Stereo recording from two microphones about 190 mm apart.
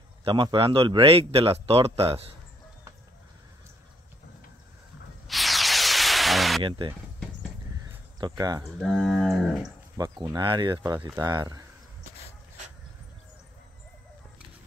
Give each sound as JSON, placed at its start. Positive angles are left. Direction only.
{"t": 0.2, "sound": "speech", "side_deg": -25}
{"t": 5.3, "sound": "a sound", "side_deg": 0}
{"t": 7.8, "sound": "cricket", "side_deg": -20}
{"t": 8.6, "sound": "cattle", "side_deg": 0}
{"t": 9.9, "sound": "speech", "side_deg": -20}